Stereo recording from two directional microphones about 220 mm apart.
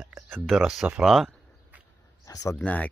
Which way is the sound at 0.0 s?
10° right (ahead or behind).